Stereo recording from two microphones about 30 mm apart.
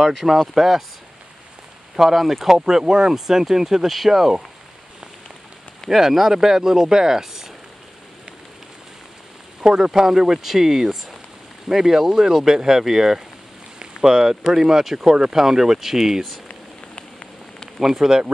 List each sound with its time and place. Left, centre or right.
0.1 s speech: centre
2.1 s speech: centre
2.4 s speech: centre
5.9 s speech: centre
9.6 s speech: centre
17.7 s speech: centre